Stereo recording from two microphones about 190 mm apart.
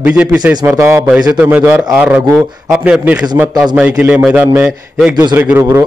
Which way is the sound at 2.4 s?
20° right (ahead or behind).